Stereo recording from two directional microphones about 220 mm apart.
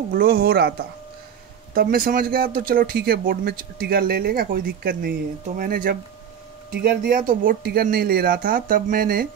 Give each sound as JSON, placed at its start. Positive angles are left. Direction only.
{"t": 0.1, "sound": "speech", "side_deg": -40}